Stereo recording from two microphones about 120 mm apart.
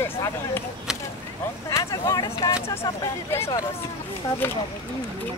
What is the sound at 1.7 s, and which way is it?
Speech, 30° left (ahead or behind).